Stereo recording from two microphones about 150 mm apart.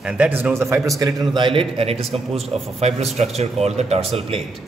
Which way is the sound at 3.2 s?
45° right (ahead or behind).